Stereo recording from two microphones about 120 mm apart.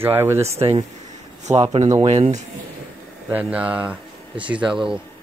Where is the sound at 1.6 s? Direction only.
55° right (ahead or behind).